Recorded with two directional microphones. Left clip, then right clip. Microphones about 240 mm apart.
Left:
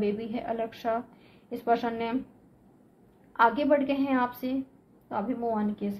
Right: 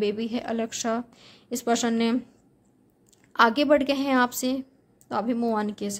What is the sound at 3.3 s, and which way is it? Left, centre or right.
A woman's voice, right.